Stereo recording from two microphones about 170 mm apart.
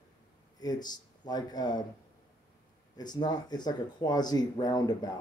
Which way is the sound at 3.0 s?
25° left (ahead or behind).